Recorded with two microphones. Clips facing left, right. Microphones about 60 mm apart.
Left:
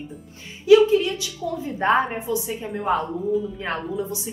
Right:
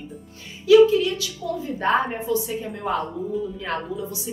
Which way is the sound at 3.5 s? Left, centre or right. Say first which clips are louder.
Left 1 dB; left.